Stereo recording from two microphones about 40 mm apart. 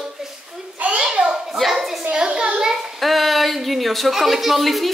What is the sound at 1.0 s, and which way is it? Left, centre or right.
Speech, right.